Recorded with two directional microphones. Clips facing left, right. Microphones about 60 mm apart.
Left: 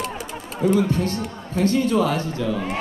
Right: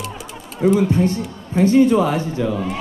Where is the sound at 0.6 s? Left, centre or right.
Centre.